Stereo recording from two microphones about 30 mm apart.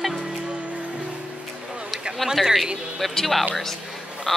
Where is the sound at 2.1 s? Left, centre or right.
Centre.